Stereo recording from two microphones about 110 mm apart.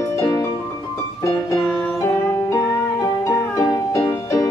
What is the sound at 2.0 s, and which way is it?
Music, 25° left (ahead or behind).